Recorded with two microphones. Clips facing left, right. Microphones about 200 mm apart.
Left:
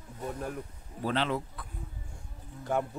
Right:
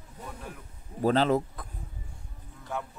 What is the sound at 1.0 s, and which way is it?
Speech, 40° right (ahead or behind).